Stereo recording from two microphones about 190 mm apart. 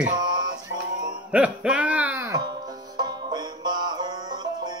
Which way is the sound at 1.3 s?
5° right (ahead or behind).